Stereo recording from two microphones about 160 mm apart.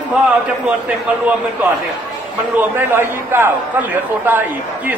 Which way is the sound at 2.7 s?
15° right (ahead or behind).